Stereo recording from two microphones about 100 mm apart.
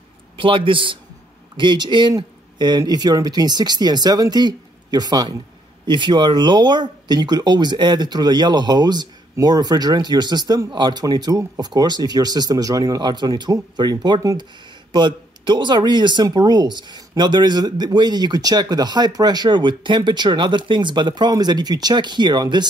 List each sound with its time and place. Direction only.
0.4 s a man's voice: 60° right (ahead or behind)